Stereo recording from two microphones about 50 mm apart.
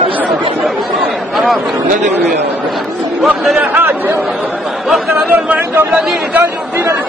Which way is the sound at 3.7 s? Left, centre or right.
Right.